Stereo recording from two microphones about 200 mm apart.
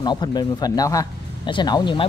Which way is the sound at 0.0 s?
20° left (ahead or behind).